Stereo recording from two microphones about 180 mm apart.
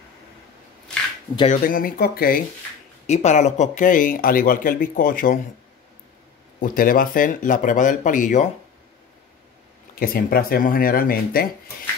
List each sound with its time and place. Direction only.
1.5 s speech: 50° left (ahead or behind)
3.1 s speech: 40° left (ahead or behind)
6.6 s speech: 50° left (ahead or behind)
9.9 s speech: 55° left (ahead or behind)